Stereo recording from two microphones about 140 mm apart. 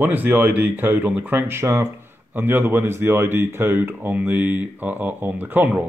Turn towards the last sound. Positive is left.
turn(degrees=-15)  # may be behind; listen again after turning